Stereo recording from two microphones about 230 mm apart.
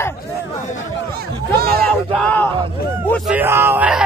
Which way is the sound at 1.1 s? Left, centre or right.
Right.